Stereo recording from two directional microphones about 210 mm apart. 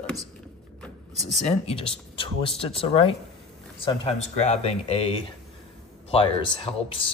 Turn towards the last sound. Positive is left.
turn(degrees=25)  # may be behind; listen again after turning